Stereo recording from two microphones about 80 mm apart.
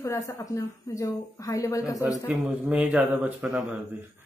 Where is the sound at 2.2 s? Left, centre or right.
Centre.